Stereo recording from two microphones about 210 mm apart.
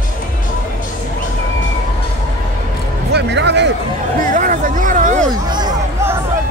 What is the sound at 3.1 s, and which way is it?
Music, 55° right (ahead or behind).